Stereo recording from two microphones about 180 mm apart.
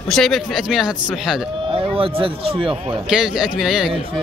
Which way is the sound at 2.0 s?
30° right (ahead or behind).